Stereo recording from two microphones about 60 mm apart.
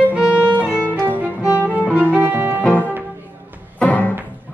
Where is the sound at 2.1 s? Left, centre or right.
Right.